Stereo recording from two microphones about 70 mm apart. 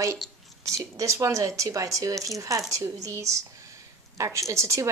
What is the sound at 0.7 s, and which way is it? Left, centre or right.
A woman's voice, right.